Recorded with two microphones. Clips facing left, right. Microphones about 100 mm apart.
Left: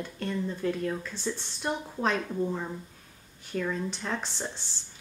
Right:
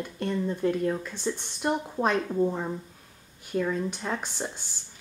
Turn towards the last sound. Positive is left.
turn(degrees=-10)  # may be behind; listen again after turning